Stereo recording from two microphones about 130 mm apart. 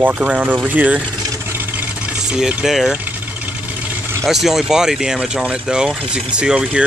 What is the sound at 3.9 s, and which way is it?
Vehicle, 20° right (ahead or behind).